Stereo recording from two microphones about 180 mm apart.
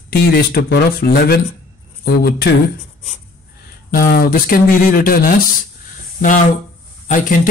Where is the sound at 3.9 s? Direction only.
55° left (ahead or behind).